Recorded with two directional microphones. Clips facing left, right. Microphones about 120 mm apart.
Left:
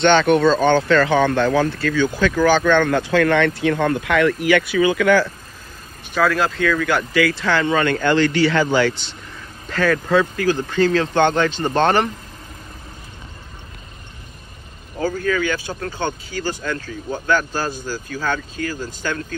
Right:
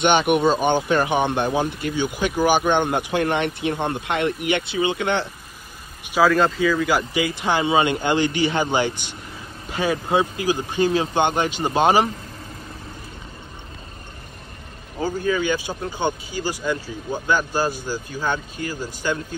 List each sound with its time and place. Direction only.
0.0 s speech: 15° right (ahead or behind)
6.1 s speech: centre (ahead or behind)
7.2 s speech: 15° right (ahead or behind)
15.0 s speech: 20° right (ahead or behind)